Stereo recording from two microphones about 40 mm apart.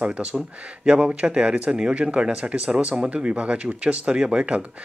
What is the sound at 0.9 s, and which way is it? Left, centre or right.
Speech, right.